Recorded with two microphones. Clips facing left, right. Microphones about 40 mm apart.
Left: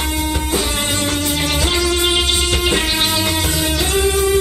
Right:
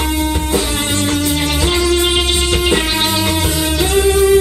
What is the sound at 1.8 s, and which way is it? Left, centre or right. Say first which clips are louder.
Music: right 6 dB; centre.